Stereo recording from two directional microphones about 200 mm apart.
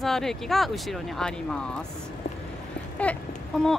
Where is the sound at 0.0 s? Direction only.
Centre (ahead or behind).